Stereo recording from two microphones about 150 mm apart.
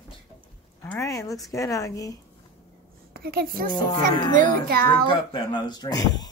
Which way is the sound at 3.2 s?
85° right.